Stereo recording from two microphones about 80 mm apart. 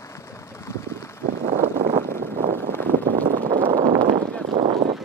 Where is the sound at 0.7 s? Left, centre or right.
Left.